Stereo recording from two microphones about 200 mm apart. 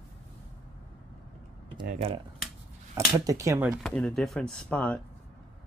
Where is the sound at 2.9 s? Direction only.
15° right (ahead or behind).